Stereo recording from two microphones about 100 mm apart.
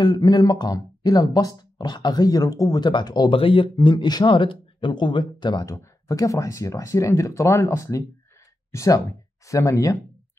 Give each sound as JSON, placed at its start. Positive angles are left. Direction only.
{"t": 0.0, "sound": "speech", "side_deg": 40}
{"t": 3.3, "sound": "speech", "side_deg": 60}
{"t": 3.7, "sound": "speech", "side_deg": 45}
{"t": 5.7, "sound": "speech", "side_deg": 35}